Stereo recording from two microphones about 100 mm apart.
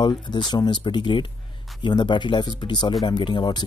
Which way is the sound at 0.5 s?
45° left (ahead or behind).